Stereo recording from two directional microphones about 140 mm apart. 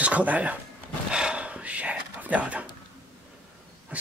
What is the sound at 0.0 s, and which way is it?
Speech, 10° right (ahead or behind).